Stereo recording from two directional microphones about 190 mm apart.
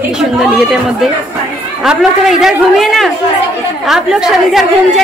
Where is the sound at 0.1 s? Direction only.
Centre (ahead or behind).